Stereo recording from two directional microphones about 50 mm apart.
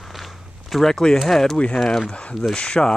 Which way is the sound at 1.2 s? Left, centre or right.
Centre.